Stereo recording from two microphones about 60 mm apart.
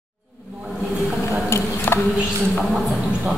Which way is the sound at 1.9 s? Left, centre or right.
Left.